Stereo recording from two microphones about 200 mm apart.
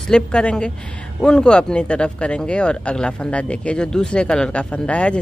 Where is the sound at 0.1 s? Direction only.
5° left (ahead or behind).